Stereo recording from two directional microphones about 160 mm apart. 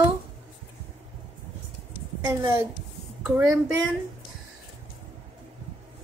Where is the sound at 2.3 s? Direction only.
20° right (ahead or behind).